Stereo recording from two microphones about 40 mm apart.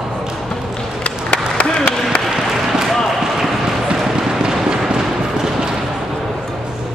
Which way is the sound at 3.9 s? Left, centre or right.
Centre.